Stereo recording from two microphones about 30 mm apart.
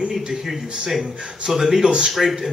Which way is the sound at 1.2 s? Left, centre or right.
Right.